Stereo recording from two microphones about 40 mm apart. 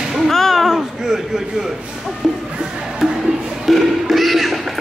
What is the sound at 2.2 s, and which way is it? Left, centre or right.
Music, centre.